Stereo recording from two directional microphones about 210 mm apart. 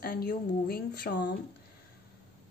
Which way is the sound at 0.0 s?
45° left (ahead or behind).